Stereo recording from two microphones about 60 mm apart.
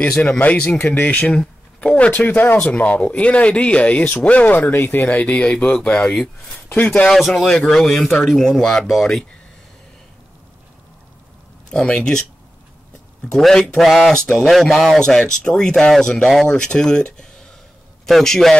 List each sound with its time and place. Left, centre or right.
0.2 s speech: left
2.6 s speech: left
7.1 s speech: centre
11.7 s speech: centre
13.4 s speech: centre
15.0 s speech: centre